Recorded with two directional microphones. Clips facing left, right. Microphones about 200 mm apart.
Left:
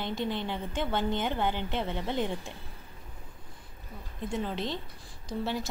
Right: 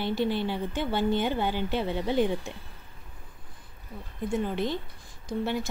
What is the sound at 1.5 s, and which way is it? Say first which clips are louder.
Speech: right 4 dB; 20° left (ahead or behind).